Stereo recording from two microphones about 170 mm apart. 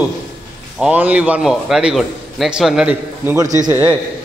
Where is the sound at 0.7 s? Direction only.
5° right (ahead or behind).